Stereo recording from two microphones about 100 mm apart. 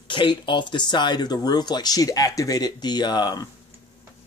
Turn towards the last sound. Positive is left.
turn(degrees=45)  # may be behind; listen again after turning